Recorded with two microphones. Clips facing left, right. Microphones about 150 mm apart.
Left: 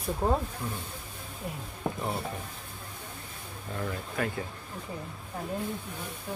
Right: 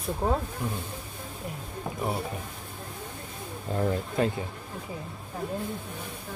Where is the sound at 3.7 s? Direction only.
30° right (ahead or behind).